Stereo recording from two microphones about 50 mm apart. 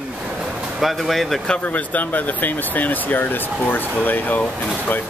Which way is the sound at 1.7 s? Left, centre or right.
Left.